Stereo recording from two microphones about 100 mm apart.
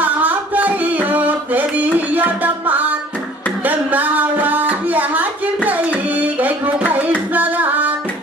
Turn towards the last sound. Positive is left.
turn(degrees=-15)  # may be behind; listen again after turning